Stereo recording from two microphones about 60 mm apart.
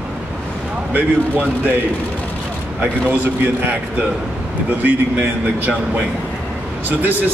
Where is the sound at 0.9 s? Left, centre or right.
Right.